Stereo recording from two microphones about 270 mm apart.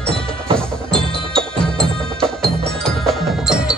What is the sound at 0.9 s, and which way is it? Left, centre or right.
Music, centre.